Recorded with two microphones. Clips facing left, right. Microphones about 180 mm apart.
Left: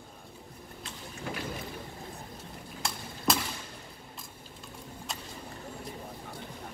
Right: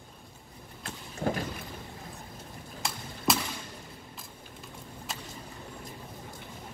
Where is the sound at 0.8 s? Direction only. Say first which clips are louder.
Right 8 dB; 50° right (ahead or behind).